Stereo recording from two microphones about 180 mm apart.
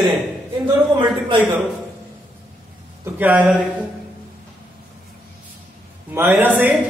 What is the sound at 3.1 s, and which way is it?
Speech, 10° right (ahead or behind).